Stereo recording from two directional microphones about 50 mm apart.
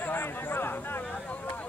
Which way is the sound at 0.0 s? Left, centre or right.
Left.